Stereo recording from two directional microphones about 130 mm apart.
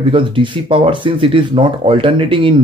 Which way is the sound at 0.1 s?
40° right (ahead or behind).